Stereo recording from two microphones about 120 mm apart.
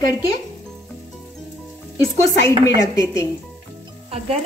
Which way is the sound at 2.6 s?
30° left (ahead or behind).